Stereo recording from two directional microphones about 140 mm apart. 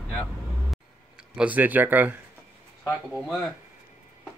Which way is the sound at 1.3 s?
10° right (ahead or behind).